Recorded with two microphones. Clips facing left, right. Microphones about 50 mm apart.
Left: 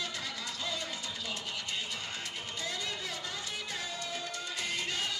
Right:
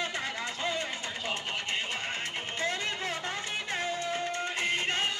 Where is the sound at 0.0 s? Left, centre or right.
Right.